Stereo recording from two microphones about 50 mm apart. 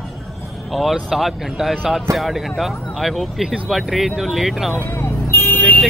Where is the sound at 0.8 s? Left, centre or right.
Centre.